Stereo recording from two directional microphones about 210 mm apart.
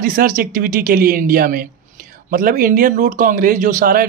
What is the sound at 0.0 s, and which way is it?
Speech, 40° right (ahead or behind).